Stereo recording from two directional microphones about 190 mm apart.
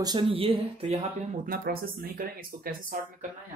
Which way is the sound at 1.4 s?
50° right (ahead or behind).